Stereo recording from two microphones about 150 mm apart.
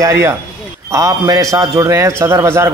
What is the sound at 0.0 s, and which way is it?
A man's voice, 15° right (ahead or behind).